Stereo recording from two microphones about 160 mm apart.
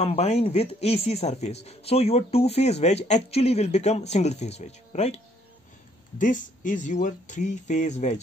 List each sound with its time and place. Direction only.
0.0 s speech: 40° left (ahead or behind)
6.1 s speech: 55° left (ahead or behind)